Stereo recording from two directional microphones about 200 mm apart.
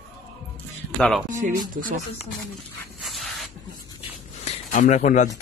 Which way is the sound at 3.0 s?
Centre (ahead or behind).